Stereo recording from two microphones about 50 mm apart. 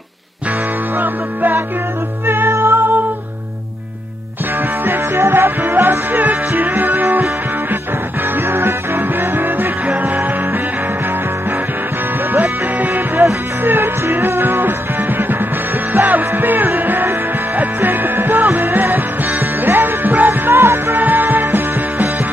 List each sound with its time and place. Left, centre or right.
0.9 s music: right
2.2 s music: right
4.8 s music: right
8.5 s music: right
12.3 s music: right